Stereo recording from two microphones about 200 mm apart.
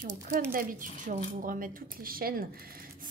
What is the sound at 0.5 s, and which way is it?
Speech, 45° right (ahead or behind).